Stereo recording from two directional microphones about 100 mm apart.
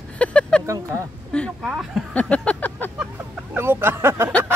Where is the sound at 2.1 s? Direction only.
15° left (ahead or behind).